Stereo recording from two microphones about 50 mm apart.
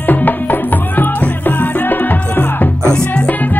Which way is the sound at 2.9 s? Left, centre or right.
Left.